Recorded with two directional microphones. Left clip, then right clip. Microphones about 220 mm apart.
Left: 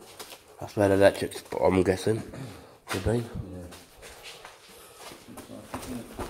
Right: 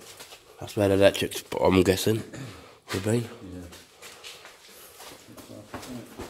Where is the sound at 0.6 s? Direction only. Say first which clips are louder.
Even; 30° right (ahead or behind).